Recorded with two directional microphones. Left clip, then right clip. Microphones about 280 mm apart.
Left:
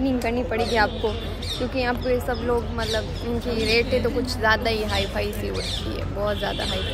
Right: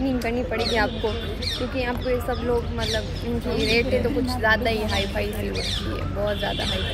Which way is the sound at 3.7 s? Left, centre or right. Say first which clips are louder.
Left 1 dB; centre.